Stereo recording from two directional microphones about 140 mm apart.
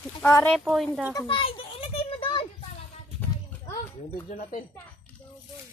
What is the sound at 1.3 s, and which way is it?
Children playing, 40° left (ahead or behind).